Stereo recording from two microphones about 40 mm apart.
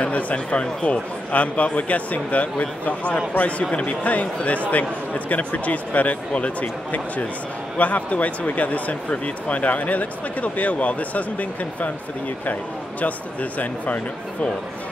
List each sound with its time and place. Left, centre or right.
0.0 s speech: left
13.0 s speech: left